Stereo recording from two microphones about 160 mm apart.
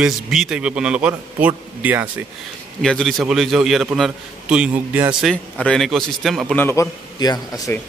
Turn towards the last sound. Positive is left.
turn(degrees=20)  # may be behind; listen again after turning